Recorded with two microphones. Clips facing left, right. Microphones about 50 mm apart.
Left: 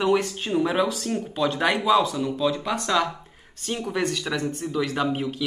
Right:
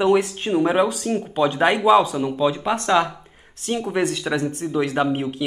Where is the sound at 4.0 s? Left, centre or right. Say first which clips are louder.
Right 4 dB; centre.